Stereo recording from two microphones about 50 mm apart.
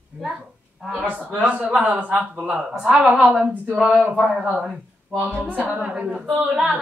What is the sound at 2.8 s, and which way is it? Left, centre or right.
Speech, centre.